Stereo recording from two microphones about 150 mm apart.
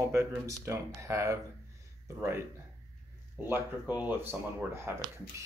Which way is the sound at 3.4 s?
10° right (ahead or behind).